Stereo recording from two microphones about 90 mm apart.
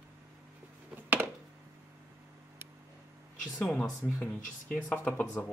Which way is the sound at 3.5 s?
10° left (ahead or behind).